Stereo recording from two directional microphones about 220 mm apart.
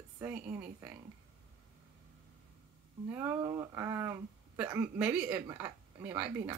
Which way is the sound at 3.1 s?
15° right (ahead or behind).